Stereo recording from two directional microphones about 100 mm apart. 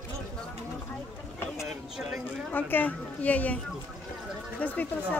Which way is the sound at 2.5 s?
15° left (ahead or behind).